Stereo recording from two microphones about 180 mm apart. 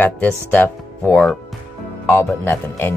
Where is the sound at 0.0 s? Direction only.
10° left (ahead or behind).